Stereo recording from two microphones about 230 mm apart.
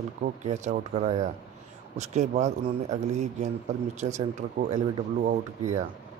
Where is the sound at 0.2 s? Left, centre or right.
Right.